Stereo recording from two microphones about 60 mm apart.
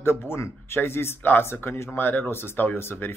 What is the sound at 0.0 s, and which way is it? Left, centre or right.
A man's voice, left.